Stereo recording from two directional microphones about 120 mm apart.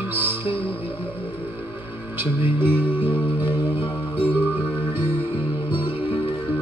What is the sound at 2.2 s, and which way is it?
Music, 15° right (ahead or behind).